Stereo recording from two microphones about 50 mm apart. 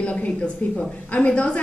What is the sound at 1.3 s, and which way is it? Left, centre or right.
Speech, left.